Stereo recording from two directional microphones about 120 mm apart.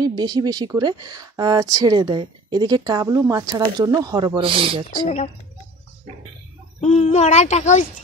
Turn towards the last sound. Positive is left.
turn(degrees=85)